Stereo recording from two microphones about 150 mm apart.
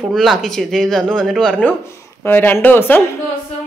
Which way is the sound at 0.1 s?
Centre (ahead or behind).